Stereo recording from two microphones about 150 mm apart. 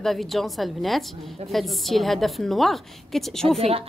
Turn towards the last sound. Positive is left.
turn(degrees=-40)  # may be behind; listen again after turning